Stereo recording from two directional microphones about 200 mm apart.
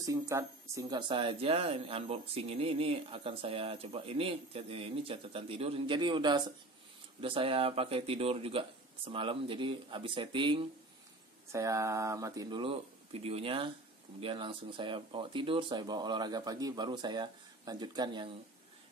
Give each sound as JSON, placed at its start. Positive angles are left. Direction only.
{"t": 0.0, "sound": "speech", "side_deg": -15}
{"t": 11.5, "sound": "speech", "side_deg": -15}